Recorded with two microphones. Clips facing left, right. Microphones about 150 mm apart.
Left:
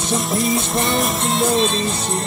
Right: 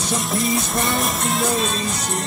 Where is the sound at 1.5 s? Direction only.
25° left (ahead or behind).